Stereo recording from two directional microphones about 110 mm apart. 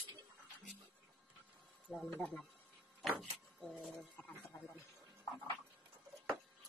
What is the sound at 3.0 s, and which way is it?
Vehicle, 5° left (ahead or behind).